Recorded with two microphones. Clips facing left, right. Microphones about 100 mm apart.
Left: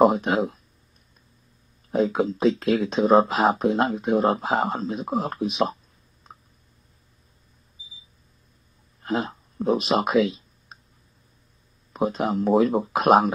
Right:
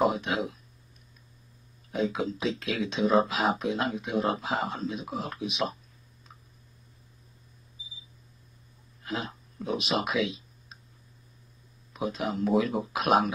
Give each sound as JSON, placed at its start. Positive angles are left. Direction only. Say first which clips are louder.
{"t": 0.0, "sound": "speech", "louder": "left 8 dB", "side_deg": 40}
{"t": 1.9, "sound": "speech", "louder": "left 7 dB", "side_deg": 40}
{"t": 6.3, "sound": "a sound", "louder": "left 7 dB", "side_deg": 50}
{"t": 9.0, "sound": "speech", "louder": "left 8 dB", "side_deg": 45}
{"t": 11.9, "sound": "speech", "louder": "left 7 dB", "side_deg": 45}